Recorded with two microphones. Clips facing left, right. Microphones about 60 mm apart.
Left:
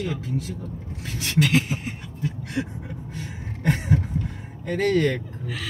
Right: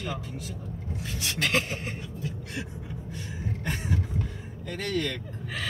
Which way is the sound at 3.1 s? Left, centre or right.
Left.